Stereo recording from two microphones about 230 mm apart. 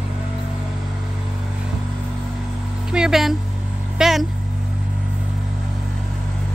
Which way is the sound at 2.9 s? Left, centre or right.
Centre.